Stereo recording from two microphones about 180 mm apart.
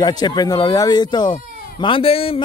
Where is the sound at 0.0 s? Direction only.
25° left (ahead or behind).